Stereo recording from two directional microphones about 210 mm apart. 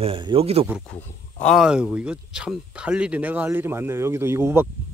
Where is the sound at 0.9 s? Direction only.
5° left (ahead or behind).